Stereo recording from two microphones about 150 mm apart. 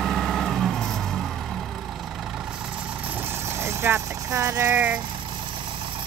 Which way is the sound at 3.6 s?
15° right (ahead or behind).